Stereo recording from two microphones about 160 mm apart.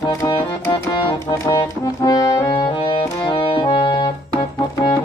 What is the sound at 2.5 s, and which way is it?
Music, 30° left (ahead or behind).